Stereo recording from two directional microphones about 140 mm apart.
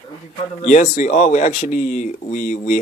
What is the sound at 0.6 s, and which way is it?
Speech, 60° left (ahead or behind).